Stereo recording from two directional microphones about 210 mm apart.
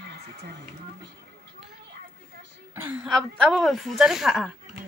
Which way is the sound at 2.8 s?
5° right (ahead or behind).